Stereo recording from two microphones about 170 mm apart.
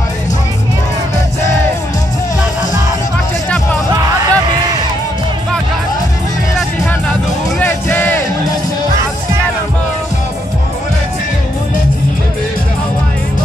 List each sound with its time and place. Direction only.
3.9 s music: 20° right (ahead or behind)
7.6 s music: 10° left (ahead or behind)